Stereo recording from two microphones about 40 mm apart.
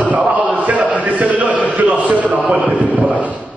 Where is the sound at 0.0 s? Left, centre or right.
Right.